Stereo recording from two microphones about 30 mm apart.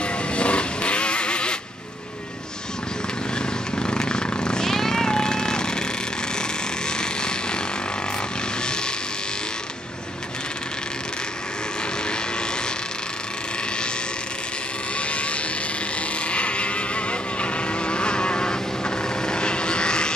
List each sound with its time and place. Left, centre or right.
0.0 s music: left
3.7 s a sound: left
4.6 s jackhammer: centre
6.9 s vehicle: left
15.0 s vehicle: left